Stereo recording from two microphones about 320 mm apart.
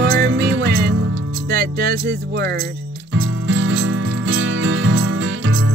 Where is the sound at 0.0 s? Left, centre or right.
Right.